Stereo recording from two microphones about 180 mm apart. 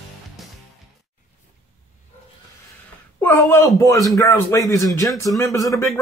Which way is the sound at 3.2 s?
10° left (ahead or behind).